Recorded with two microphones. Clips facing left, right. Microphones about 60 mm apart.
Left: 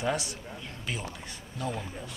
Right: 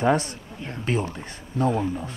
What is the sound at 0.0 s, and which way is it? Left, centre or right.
Speech, right.